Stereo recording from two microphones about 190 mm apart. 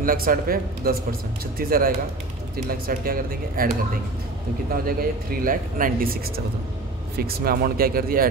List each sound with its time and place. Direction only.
0.0 s speech: 50° right (ahead or behind)
4.8 s speech: 50° right (ahead or behind)